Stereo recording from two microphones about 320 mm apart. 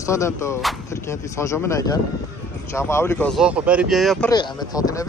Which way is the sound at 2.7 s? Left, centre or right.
Centre.